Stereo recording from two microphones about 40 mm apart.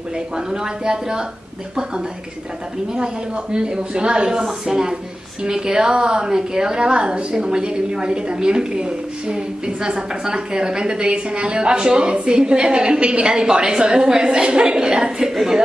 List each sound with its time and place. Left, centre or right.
0.5 s a woman's voice: centre
3.5 s a woman's voice: right